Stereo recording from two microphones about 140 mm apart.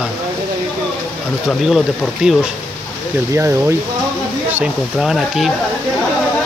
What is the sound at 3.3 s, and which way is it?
Speech, 20° right (ahead or behind).